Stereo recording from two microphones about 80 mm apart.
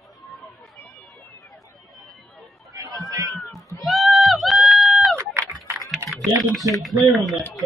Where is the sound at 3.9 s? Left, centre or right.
Centre.